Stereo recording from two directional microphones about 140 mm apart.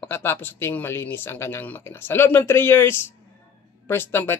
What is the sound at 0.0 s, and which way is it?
Speech, 15° left (ahead or behind).